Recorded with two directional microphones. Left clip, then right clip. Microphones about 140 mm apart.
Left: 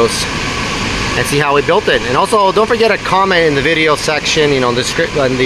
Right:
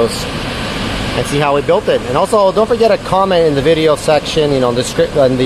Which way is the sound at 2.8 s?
15° right (ahead or behind).